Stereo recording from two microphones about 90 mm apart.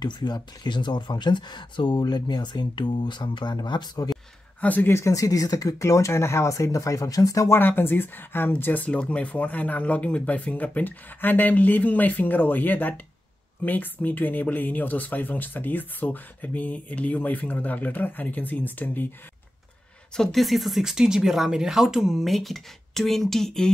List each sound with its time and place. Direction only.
0.0 s speech: 55° left (ahead or behind)
4.6 s speech: 20° left (ahead or behind)
4.9 s speech: 35° left (ahead or behind)
7.5 s speech: 25° left (ahead or behind)
20.2 s speech: centre (ahead or behind)